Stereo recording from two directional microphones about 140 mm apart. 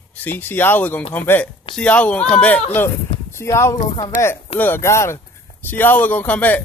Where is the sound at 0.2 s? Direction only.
15° left (ahead or behind).